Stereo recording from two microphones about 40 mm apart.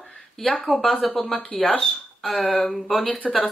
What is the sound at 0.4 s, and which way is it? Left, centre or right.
Speech, centre.